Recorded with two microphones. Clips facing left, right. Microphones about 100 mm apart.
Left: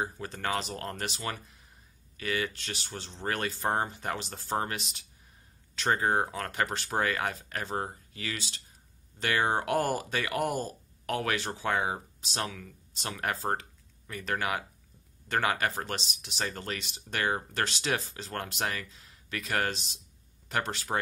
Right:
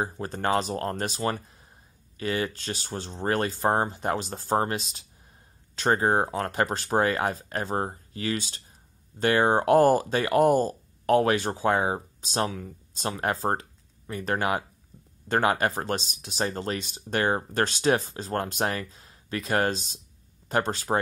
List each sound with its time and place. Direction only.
0.0 s speech: 35° right (ahead or behind)